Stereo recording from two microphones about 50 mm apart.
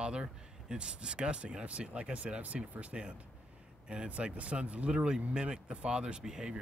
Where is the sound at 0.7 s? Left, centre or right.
Centre.